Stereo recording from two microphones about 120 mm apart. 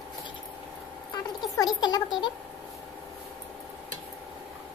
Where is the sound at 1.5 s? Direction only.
35° left (ahead or behind).